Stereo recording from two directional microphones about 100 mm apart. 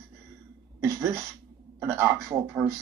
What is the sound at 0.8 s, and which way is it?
A man's voice, 30° right (ahead or behind).